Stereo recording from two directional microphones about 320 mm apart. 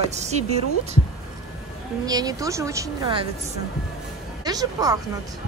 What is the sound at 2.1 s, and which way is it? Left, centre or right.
Speech, centre.